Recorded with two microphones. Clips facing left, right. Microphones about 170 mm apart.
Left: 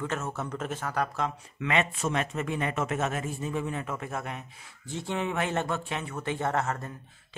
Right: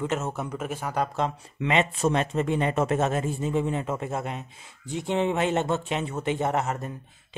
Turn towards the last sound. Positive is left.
turn(degrees=-20)  # may be behind; listen again after turning